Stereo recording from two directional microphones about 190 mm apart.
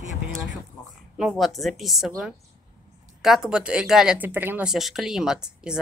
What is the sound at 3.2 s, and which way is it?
Speech, 5° right (ahead or behind).